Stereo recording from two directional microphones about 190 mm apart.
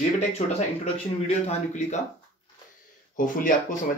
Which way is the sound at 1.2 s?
35° left (ahead or behind).